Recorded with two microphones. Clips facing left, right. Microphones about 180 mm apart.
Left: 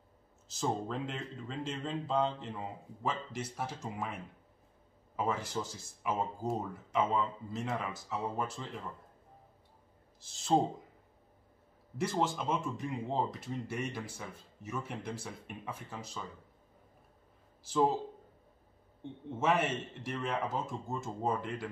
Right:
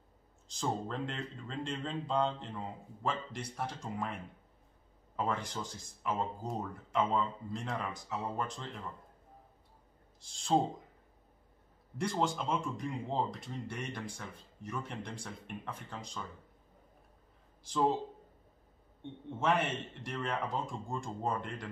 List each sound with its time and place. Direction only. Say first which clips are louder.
0.5 s speech: left 1 dB; 5° left (ahead or behind)
10.2 s speech: even; centre (ahead or behind)
12.0 s speech: left 1 dB; 5° left (ahead or behind)
19.4 s speech: left 1 dB; centre (ahead or behind)